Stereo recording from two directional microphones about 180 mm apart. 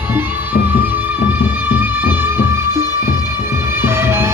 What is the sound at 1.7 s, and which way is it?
Music, 10° right (ahead or behind).